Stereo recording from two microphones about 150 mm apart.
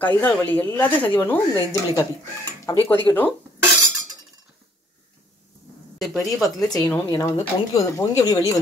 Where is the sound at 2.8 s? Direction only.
15° left (ahead or behind).